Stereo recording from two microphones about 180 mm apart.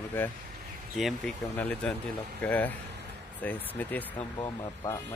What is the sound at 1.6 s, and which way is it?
Speech, 10° left (ahead or behind).